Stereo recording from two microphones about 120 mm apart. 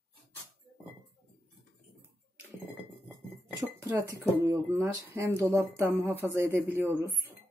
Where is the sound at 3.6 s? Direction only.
25° right (ahead or behind).